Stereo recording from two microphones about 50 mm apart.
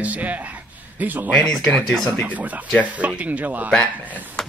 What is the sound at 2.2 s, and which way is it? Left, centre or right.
Speech, right.